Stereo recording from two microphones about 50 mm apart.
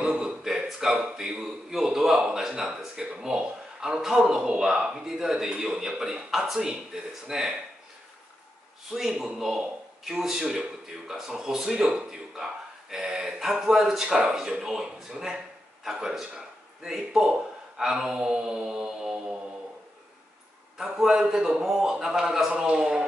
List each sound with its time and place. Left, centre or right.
0.0 s a man's voice: centre
9.2 s a man's voice: centre
20.7 s a man's voice: centre